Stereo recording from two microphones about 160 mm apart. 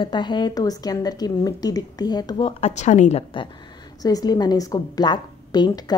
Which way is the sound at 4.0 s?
25° left (ahead or behind).